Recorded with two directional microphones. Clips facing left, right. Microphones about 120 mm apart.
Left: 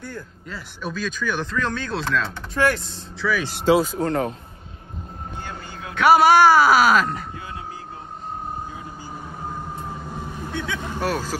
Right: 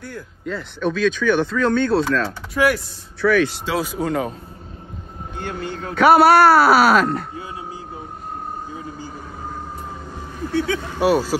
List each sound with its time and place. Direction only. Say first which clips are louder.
0.1 s speech: right 6 dB; 5° left (ahead or behind)
3.4 s speech: left 7 dB; 45° left (ahead or behind)
3.7 s speech: left 3 dB; 5° right (ahead or behind)
5.4 s a sound: right 11 dB; 60° right (ahead or behind)
5.9 s speech: right 2 dB; centre (ahead or behind)
10.9 s speech: right 7 dB; 10° right (ahead or behind)